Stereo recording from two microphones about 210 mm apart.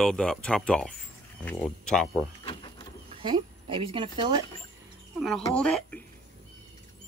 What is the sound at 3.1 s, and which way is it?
Speech, 25° right (ahead or behind).